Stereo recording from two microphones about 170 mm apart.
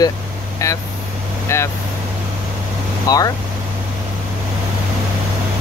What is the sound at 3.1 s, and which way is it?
Speech, 20° left (ahead or behind).